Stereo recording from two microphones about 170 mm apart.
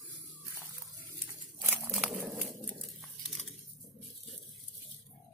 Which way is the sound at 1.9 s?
Centre (ahead or behind).